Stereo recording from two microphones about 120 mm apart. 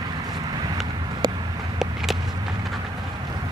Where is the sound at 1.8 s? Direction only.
5° right (ahead or behind).